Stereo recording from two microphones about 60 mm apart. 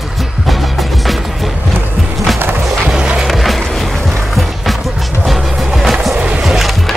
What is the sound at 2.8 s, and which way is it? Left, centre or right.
Skateboard, centre.